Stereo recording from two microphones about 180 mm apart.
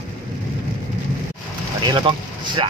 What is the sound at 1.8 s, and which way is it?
Speech, 25° right (ahead or behind).